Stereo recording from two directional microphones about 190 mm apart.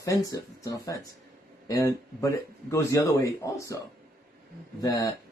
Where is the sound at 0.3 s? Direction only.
20° left (ahead or behind).